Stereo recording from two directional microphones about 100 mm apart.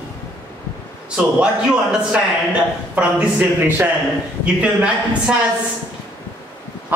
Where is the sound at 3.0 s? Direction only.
10° right (ahead or behind).